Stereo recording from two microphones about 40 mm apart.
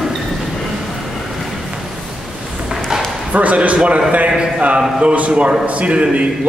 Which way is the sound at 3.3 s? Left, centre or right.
Right.